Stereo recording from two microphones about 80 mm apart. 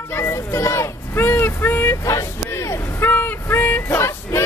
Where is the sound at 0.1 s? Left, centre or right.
Left.